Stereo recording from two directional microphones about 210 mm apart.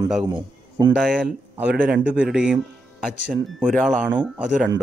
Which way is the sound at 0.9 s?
5° right (ahead or behind).